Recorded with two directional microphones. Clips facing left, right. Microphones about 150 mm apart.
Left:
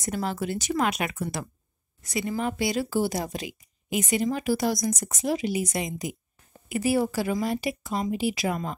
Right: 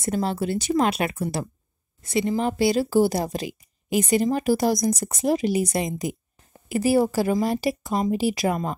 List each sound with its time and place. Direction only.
0.0 s a woman's voice: 30° right (ahead or behind)